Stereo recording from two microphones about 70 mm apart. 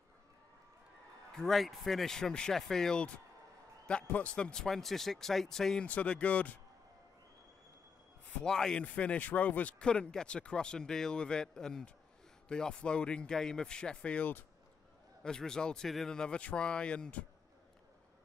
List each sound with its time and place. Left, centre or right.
1.3 s speech: centre
5.9 s speech: left
8.4 s speech: centre
8.8 s speech: centre
15.2 s speech: centre